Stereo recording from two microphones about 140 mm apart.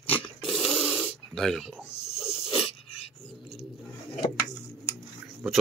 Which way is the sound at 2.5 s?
40° left (ahead or behind).